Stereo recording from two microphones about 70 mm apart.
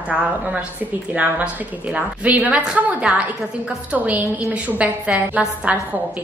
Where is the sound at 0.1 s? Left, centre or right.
Centre.